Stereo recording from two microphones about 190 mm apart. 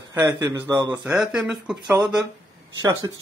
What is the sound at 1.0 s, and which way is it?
Speech, 5° right (ahead or behind).